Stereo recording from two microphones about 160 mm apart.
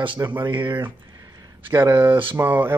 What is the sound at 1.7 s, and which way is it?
Speech, 15° right (ahead or behind).